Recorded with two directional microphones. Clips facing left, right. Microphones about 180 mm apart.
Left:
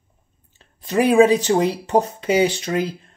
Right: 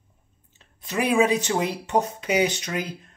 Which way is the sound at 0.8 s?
30° left (ahead or behind).